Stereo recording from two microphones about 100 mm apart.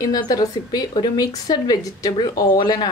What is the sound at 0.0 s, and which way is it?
A woman's voice, 40° left (ahead or behind).